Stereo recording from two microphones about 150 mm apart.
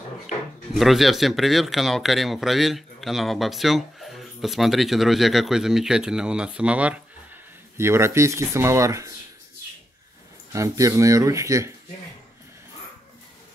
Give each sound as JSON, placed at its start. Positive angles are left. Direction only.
{"t": 0.7, "sound": "speech", "side_deg": 0}
{"t": 10.5, "sound": "speech", "side_deg": -20}